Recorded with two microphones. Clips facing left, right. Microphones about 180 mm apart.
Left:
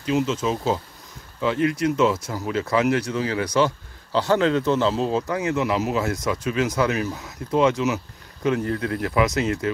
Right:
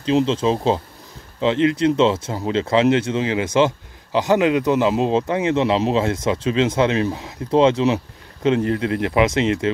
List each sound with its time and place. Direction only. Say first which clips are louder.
0.0 s speech: right 5 dB; 30° right (ahead or behind)